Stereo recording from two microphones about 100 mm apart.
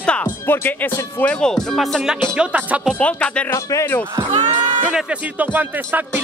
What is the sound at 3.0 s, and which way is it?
Speech, 10° left (ahead or behind).